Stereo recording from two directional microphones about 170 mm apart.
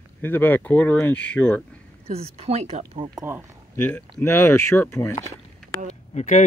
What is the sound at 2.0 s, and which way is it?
Speech, 35° right (ahead or behind).